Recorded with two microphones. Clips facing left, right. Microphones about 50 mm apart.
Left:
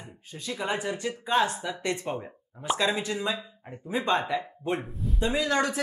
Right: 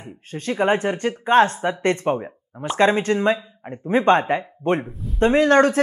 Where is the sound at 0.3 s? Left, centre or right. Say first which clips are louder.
Right 11 dB; right.